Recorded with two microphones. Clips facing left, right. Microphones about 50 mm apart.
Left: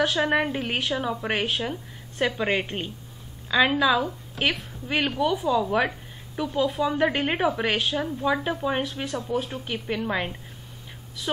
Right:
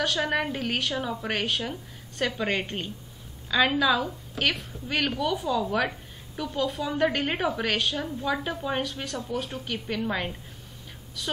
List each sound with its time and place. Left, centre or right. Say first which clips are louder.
0.0 s a woman's voice: left 4 dB; left